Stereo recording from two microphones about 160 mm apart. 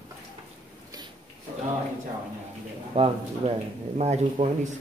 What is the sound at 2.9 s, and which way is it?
Speech, 35° right (ahead or behind).